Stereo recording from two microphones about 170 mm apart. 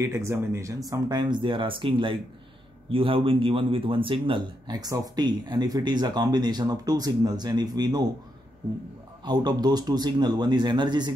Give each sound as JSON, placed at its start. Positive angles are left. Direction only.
{"t": 0.0, "sound": "speech", "side_deg": -15}
{"t": 9.2, "sound": "speech", "side_deg": -25}